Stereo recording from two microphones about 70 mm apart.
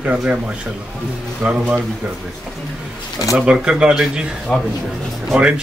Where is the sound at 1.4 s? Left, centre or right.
Right.